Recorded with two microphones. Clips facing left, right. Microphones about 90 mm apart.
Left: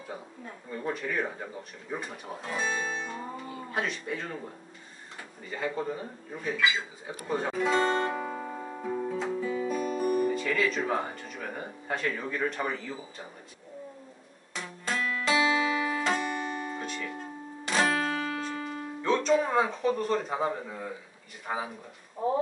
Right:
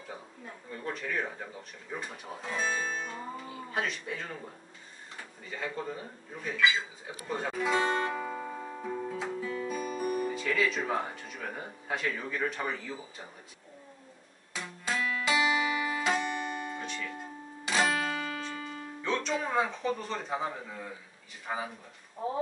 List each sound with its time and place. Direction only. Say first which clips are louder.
0.7 s speech: left 4 dB; 5° left (ahead or behind)
5.5 s speech: left 4 dB; 5° left (ahead or behind)
8.1 s music: left 2 dB; 15° left (ahead or behind)
14.5 s music: left 1 dB; 5° right (ahead or behind)
17.9 s music: left 3 dB; 30° left (ahead or behind)
19.0 s speech: left 7 dB; 5° left (ahead or behind)